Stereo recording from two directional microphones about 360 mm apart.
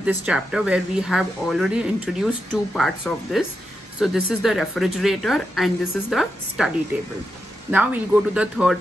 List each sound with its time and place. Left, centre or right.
0.0 s speech: centre